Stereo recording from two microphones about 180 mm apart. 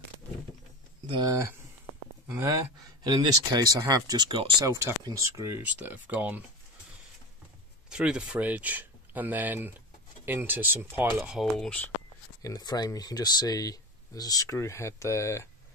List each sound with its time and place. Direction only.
1.0 s speech: 25° right (ahead or behind); by 6.4 s 10° right (ahead or behind)
7.9 s speech: 5° right (ahead or behind)
11.3 s speech: 5° left (ahead or behind)
12.4 s speech: 20° left (ahead or behind)